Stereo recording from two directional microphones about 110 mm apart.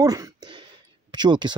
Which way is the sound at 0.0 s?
35° right (ahead or behind).